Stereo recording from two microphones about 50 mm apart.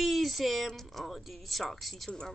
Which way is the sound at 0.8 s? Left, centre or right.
Centre.